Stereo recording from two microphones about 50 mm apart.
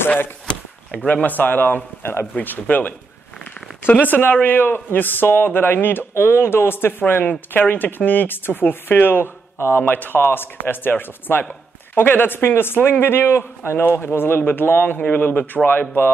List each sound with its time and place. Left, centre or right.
1.0 s speech: left
9.8 s speech: left
15.0 s speech: left